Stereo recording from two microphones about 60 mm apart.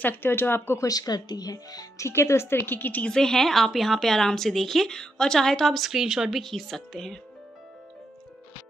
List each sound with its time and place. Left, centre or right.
0.0 s speech: left
0.7 s speech: left
2.0 s speech: left
3.0 s a woman's voice: centre